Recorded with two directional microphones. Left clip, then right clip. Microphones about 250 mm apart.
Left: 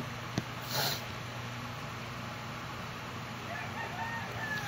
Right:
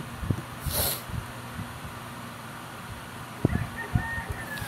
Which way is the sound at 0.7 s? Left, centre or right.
Centre.